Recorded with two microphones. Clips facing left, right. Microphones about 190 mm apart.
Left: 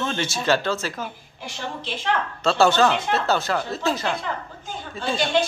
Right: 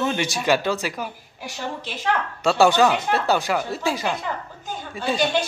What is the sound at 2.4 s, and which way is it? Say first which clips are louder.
Speech: right 1 dB; 15° right (ahead or behind).